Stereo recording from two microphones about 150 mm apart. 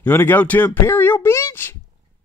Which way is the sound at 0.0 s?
15° left (ahead or behind).